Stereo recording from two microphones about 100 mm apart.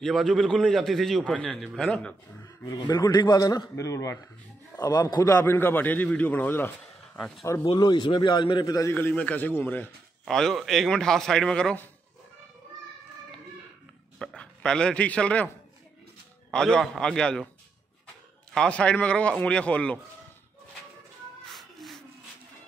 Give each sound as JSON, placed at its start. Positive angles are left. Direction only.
{"t": 0.0, "sound": "a man's voice", "side_deg": 0}
{"t": 2.4, "sound": "a man's voice", "side_deg": 40}
{"t": 5.4, "sound": "a man's voice", "side_deg": 20}
{"t": 7.6, "sound": "a man's voice", "side_deg": 45}
{"t": 8.9, "sound": "a man's voice", "side_deg": 15}
{"t": 10.2, "sound": "a man's voice", "side_deg": 5}
{"t": 14.1, "sound": "a man's voice", "side_deg": 5}
{"t": 18.5, "sound": "a man's voice", "side_deg": 10}
{"t": 21.5, "sound": "music", "side_deg": 0}